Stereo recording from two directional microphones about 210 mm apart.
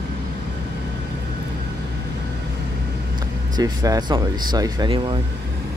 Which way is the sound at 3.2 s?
20° right (ahead or behind).